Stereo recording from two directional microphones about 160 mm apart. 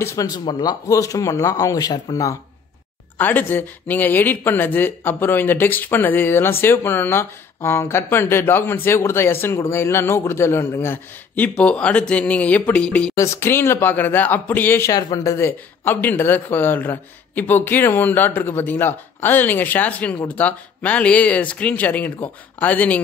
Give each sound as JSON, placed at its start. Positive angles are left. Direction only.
{"t": 0.0, "sound": "speech", "side_deg": 20}
{"t": 3.2, "sound": "speech", "side_deg": 10}
{"t": 13.1, "sound": "speech", "side_deg": 15}